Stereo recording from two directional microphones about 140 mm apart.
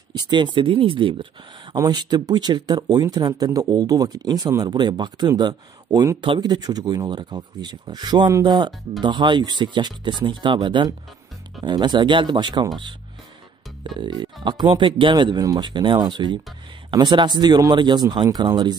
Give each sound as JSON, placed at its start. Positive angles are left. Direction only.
{"t": 0.1, "sound": "speech", "side_deg": -30}
{"t": 13.8, "sound": "speech", "side_deg": -35}